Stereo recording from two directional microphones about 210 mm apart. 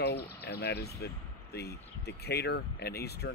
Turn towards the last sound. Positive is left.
turn(degrees=50)  # may be behind; listen again after turning